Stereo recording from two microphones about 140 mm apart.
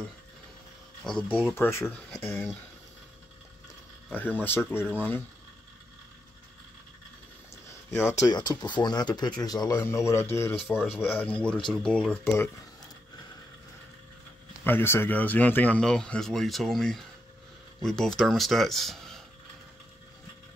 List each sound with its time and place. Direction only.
1.0 s speech: 5° left (ahead or behind)
1.5 s speech: 20° left (ahead or behind)
4.1 s speech: 15° left (ahead or behind)
7.9 s speech: 20° left (ahead or behind)
14.6 s speech: 15° left (ahead or behind)